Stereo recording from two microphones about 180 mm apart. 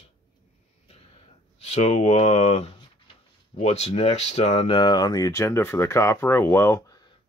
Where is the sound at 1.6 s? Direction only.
40° left (ahead or behind); by 7.1 s 20° left (ahead or behind).